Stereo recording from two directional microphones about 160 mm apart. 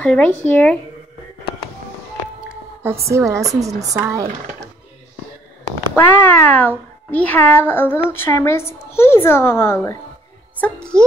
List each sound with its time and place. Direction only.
0.0 s a child's voice: 10° left (ahead or behind)
2.4 s music: 15° right (ahead or behind)
3.1 s speech: 20° right (ahead or behind)
5.9 s a child's voice: 10° left (ahead or behind)